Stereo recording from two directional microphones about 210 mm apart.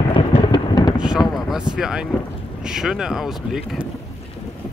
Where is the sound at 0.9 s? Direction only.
5° right (ahead or behind).